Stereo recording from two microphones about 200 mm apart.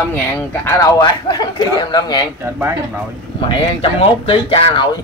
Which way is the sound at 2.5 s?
10° right (ahead or behind).